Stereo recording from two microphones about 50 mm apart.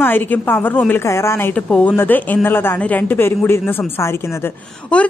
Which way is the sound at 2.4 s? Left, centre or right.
Left.